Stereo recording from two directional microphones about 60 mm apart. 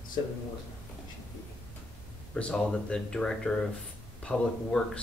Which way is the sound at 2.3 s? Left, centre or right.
Centre.